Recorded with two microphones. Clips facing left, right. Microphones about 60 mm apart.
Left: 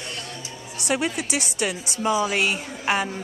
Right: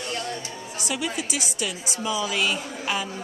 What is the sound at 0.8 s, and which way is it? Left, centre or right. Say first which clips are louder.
A woman's voice: left 4 dB; left.